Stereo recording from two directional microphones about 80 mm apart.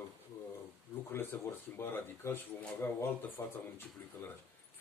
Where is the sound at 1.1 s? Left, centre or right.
Left.